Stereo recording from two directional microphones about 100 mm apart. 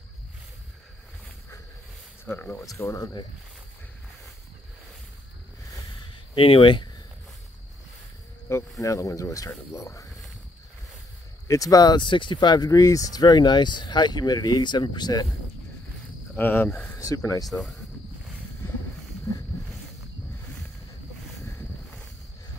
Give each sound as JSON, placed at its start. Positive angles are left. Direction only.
{"t": 2.2, "sound": "speech", "side_deg": 20}
{"t": 2.6, "sound": "speech", "side_deg": 30}
{"t": 6.3, "sound": "speech", "side_deg": 60}
{"t": 8.5, "sound": "speech", "side_deg": 30}
{"t": 11.4, "sound": "speech", "side_deg": 35}
{"t": 16.3, "sound": "speech", "side_deg": 15}
{"t": 17.0, "sound": "speech", "side_deg": 35}
{"t": 17.5, "sound": "speech", "side_deg": 5}